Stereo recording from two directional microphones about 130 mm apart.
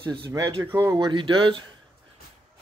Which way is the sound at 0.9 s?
40° right (ahead or behind).